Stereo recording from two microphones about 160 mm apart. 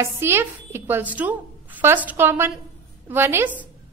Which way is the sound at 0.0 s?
15° right (ahead or behind).